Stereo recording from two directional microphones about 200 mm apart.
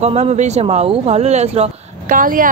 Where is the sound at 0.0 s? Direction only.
35° right (ahead or behind).